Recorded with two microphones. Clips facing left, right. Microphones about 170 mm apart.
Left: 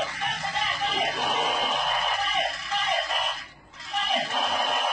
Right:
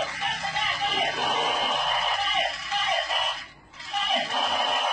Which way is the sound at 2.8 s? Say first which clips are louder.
Even; centre (ahead or behind).